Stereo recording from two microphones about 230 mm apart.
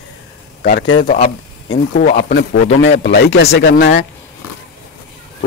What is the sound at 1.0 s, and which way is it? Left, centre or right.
Speech, left.